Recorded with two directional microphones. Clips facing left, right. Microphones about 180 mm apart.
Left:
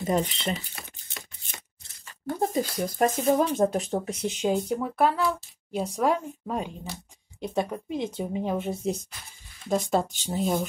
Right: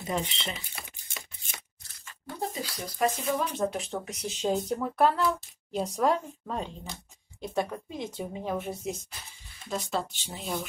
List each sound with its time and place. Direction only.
0.0 s speech: 45° left (ahead or behind)
0.7 s a sound: 10° right (ahead or behind)
2.2 s speech: 50° left (ahead or behind); by 4.3 s 30° left (ahead or behind)
4.6 s a woman's voice: 5° left (ahead or behind)
9.7 s speech: 50° left (ahead or behind)